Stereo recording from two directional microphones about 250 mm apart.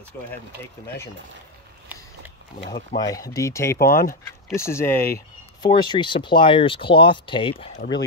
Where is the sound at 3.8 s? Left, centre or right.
Left.